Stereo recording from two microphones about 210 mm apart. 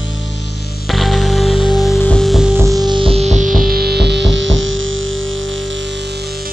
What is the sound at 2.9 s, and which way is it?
Music, 25° right (ahead or behind).